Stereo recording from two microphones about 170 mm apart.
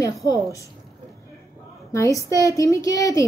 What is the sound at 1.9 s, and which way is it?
A woman's voice, 20° left (ahead or behind).